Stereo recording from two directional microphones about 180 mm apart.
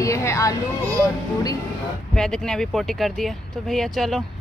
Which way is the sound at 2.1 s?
5° left (ahead or behind).